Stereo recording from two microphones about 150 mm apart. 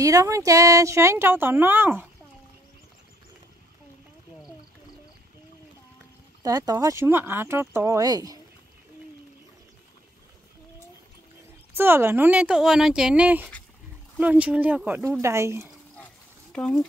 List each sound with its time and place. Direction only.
0.0 s speech: 20° right (ahead or behind)
6.4 s speech: 25° right (ahead or behind)
11.7 s speech: 15° right (ahead or behind)
15.2 s speech: 20° right (ahead or behind)
16.5 s speech: 5° left (ahead or behind)